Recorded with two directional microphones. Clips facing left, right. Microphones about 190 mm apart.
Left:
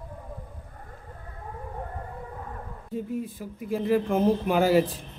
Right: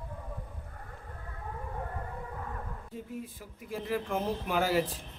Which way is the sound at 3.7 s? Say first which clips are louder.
Left 9 dB; 25° left (ahead or behind).